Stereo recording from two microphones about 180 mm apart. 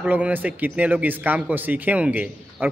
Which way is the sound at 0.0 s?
10° right (ahead or behind).